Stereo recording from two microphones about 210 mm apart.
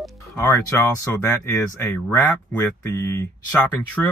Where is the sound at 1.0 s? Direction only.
15° left (ahead or behind).